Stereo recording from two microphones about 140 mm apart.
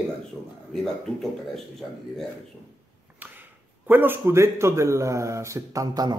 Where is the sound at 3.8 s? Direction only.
15° right (ahead or behind).